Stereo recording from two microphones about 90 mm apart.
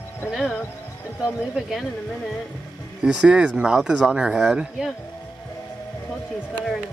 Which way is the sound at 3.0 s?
10° right (ahead or behind).